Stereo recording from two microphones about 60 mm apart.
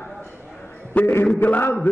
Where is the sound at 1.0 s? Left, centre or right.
Left.